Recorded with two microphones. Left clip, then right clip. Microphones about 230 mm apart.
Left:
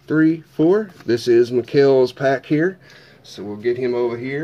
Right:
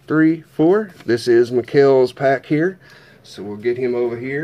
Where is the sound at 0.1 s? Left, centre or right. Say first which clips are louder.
Right 1 dB; centre.